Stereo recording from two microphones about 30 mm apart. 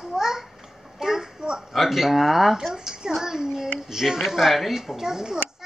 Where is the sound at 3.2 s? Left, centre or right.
Centre.